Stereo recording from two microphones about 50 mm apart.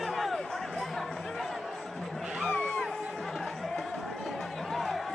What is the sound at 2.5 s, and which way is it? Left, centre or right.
Music, left.